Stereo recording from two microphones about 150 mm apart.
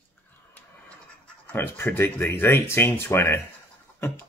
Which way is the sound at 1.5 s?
15° left (ahead or behind).